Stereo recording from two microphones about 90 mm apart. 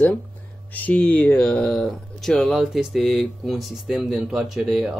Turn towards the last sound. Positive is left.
turn(degrees=0)  # may be behind; listen again after turning